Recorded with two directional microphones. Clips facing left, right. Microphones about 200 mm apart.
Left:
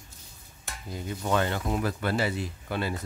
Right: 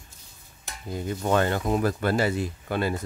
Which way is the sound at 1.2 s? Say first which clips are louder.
Right 4 dB; 50° right (ahead or behind).